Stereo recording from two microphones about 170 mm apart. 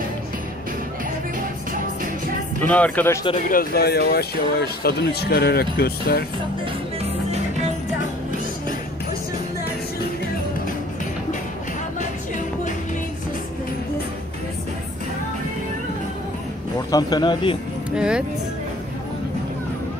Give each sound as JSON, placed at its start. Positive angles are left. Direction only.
{"t": 2.6, "sound": "speech", "side_deg": 10}
{"t": 3.4, "sound": "speech", "side_deg": 60}
{"t": 7.0, "sound": "music", "side_deg": -40}
{"t": 16.9, "sound": "speech", "side_deg": 25}
{"t": 17.9, "sound": "speech", "side_deg": -5}